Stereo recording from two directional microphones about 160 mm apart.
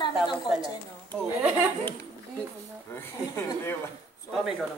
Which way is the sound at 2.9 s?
15° left (ahead or behind).